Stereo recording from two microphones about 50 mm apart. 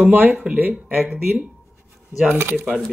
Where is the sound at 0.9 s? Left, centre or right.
Centre.